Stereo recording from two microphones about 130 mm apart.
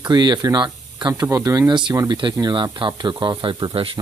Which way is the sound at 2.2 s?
35° right (ahead or behind).